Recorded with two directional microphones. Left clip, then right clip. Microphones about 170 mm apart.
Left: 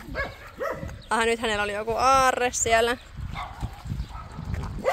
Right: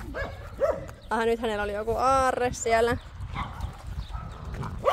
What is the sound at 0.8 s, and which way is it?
Speech, 10° right (ahead or behind).